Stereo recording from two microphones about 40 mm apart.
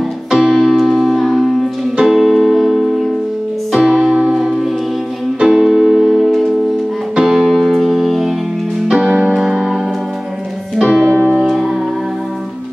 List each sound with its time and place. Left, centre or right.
0.3 s piano: centre
0.6 s music: centre
7.5 s music: centre
9.4 s music: centre
10.8 s music: centre